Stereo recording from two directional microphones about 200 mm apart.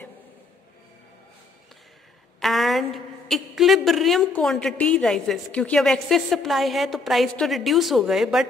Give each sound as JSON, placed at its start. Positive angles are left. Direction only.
{"t": 2.4, "sound": "a woman's voice", "side_deg": 0}